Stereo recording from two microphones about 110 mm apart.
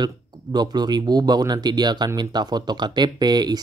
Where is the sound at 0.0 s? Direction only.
40° right (ahead or behind).